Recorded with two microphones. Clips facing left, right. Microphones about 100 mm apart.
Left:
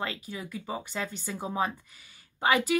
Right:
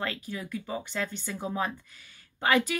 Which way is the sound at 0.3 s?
20° left (ahead or behind).